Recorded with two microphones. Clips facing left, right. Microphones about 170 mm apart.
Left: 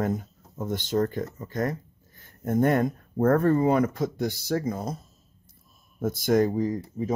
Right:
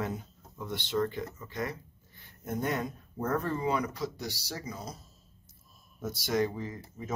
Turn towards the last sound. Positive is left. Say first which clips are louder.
# left 12 dB
turn(degrees=40)  # may be behind; listen again after turning